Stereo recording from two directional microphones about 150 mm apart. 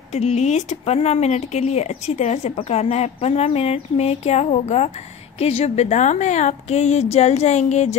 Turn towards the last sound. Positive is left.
turn(degrees=50)  # may be behind; listen again after turning